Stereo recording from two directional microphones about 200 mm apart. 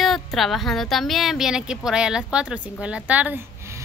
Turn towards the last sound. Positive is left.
turn(degrees=-5)  # may be behind; listen again after turning